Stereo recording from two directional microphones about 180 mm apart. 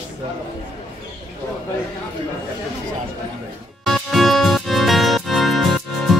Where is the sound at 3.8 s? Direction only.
Centre (ahead or behind).